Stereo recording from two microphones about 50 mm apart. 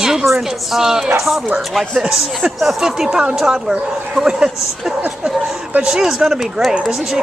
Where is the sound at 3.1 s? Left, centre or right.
Centre.